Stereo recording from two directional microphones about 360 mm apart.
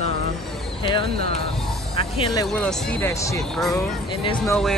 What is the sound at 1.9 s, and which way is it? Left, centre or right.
Speech, centre.